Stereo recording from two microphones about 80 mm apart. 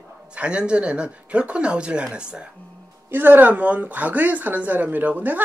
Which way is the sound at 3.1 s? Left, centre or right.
Right.